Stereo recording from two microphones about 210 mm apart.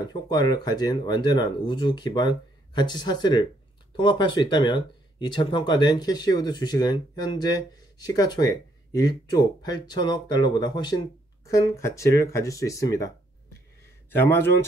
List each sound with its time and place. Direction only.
0.0 s speech: 20° left (ahead or behind)
14.1 s speech: 10° left (ahead or behind)